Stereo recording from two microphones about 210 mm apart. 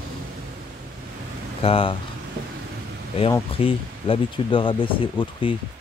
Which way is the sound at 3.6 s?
25° left (ahead or behind).